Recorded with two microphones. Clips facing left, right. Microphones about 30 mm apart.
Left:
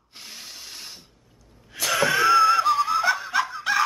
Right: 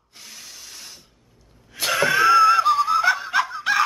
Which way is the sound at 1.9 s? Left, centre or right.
Centre.